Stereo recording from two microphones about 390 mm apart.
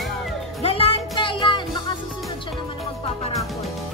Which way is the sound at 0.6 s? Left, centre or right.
Centre.